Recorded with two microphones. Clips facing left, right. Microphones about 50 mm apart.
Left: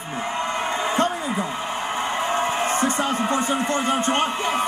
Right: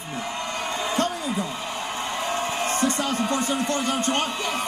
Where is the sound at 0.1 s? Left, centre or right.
Left.